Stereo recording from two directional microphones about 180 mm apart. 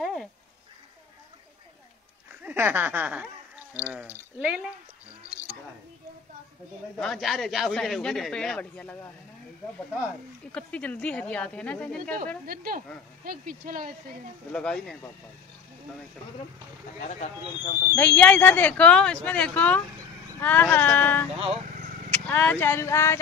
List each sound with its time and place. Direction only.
0.0 s a sound: centre (ahead or behind)
2.4 s speech: 10° right (ahead or behind)
7.0 s a man's voice: centre (ahead or behind)
10.5 s speech: 5° left (ahead or behind)
12.4 s speech: 55° right (ahead or behind)
14.5 s a man's voice: 5° left (ahead or behind)
17.0 s speech: 40° left (ahead or behind)
17.8 s speech: 10° left (ahead or behind)